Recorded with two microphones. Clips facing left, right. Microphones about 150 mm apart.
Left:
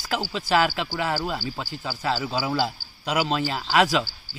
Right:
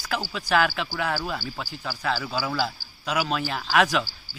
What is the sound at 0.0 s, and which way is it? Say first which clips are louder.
A man's voice: left 2 dB; 25° left (ahead or behind).